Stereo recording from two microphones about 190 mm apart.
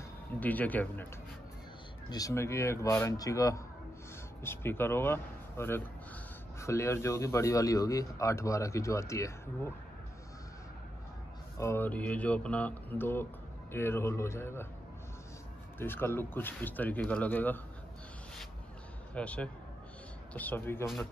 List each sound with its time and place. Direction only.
0.4 s speech: 10° left (ahead or behind)
2.0 s speech: 20° left (ahead or behind)
11.5 s speech: 15° left (ahead or behind)
15.8 s speech: 10° left (ahead or behind)
19.1 s speech: 5° left (ahead or behind)